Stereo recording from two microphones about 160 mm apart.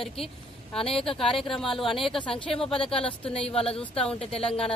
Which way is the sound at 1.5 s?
Centre (ahead or behind).